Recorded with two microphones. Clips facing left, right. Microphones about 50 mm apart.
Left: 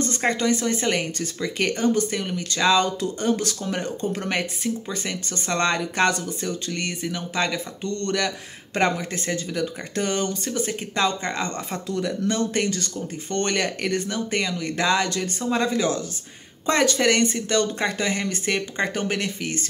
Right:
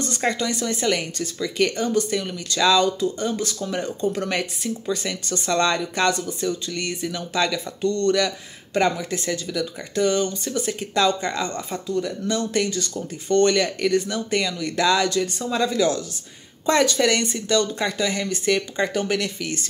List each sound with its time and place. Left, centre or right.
0.0 s speech: left
3.0 s speech: left
3.6 s speech: left
10.6 s speech: left
11.5 s speech: left
12.4 s speech: left
14.0 s speech: left